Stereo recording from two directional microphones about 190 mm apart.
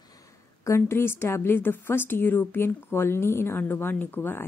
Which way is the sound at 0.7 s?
15° left (ahead or behind).